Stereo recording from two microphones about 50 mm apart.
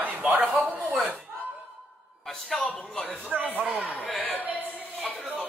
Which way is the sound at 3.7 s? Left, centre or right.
Right.